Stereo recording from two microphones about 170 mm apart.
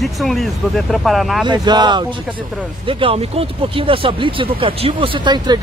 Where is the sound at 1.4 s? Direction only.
25° right (ahead or behind).